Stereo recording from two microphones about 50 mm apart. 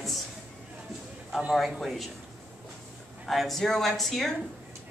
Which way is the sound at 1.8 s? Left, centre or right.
Centre.